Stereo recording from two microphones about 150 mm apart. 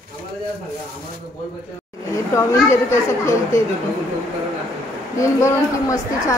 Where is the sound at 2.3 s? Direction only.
20° left (ahead or behind).